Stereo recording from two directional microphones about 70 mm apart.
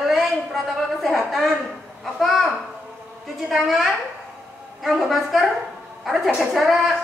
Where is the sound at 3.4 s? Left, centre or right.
Centre.